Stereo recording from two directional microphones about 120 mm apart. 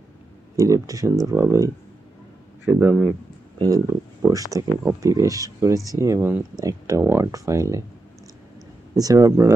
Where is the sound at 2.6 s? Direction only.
15° right (ahead or behind).